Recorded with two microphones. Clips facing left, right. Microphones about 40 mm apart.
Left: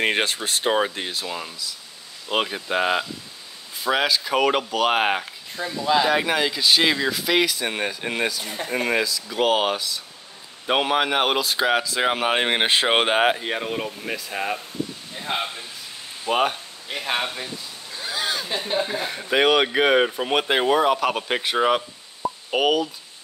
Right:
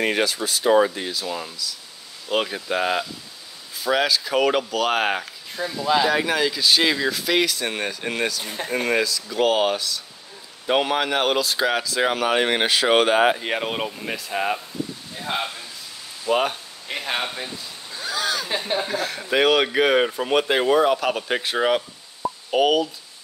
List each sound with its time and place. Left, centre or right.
0.0 s speech: left
0.7 s speech: left
13.4 s speech: centre
16.3 s speech: left
17.0 s speech: centre
18.0 s a sound: centre
18.9 s speech: left
19.3 s speech: centre